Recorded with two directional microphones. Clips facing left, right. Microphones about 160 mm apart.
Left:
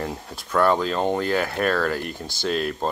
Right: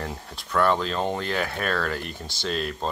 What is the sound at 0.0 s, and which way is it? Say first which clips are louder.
Speech: left 4 dB; 5° left (ahead or behind).